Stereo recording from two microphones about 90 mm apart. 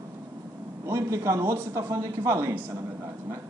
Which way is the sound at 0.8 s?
30° right (ahead or behind).